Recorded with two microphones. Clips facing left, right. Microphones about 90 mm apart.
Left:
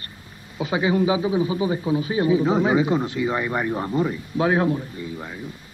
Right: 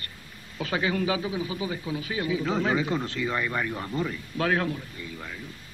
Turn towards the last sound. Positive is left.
turn(degrees=25)  # may be behind; listen again after turning